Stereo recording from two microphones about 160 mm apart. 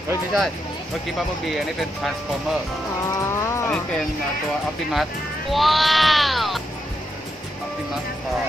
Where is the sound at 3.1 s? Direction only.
15° left (ahead or behind).